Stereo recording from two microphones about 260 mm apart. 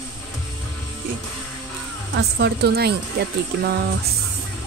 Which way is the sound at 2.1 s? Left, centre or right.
Right.